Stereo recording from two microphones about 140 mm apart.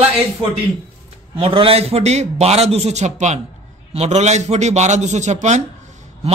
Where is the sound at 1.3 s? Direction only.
40° right (ahead or behind).